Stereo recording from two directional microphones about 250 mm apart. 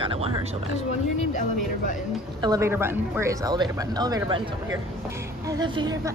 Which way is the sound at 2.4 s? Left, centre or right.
Centre.